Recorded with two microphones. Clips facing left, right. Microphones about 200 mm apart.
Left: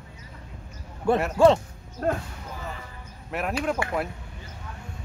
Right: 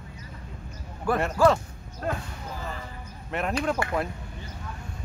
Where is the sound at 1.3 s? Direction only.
25° left (ahead or behind).